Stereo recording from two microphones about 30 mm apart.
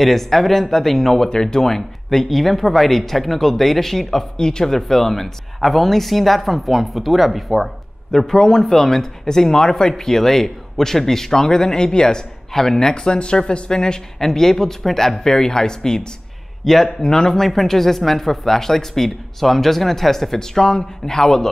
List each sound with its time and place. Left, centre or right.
0.0 s speech: centre
1.3 s speech: left
4.4 s speech: left
4.6 s speech: centre
8.2 s speech: centre
12.5 s speech: centre
12.9 s speech: left
14.2 s speech: centre
16.6 s speech: centre
17.1 s speech: left
17.4 s speech: centre